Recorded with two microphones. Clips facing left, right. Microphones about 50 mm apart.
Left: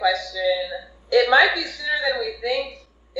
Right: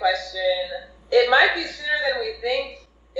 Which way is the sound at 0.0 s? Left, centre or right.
Right.